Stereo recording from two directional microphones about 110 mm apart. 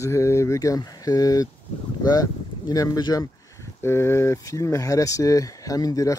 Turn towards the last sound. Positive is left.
turn(degrees=35)  # may be behind; listen again after turning